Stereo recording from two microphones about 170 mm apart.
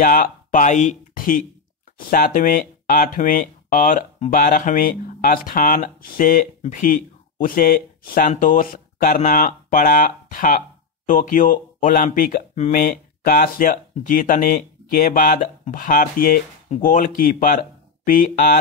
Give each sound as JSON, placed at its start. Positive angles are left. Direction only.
{"t": 0.0, "sound": "speech", "side_deg": 55}